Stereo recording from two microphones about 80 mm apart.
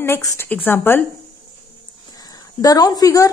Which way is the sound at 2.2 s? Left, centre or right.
Left.